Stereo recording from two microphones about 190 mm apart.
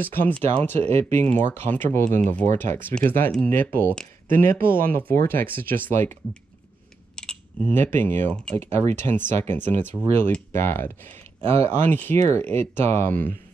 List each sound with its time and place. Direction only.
0.0 s speech: 10° left (ahead or behind)
0.7 s speech: 35° right (ahead or behind)
1.1 s speech: 10° left (ahead or behind)
4.6 s speech: 50° right (ahead or behind)
4.9 s speech: 15° left (ahead or behind)
7.2 s speech: 5° left (ahead or behind)
8.6 s speech: 35° right (ahead or behind)
8.9 s speech: 10° left (ahead or behind)
11.1 s a sound: 30° right (ahead or behind)
11.6 s speech: 10° left (ahead or behind)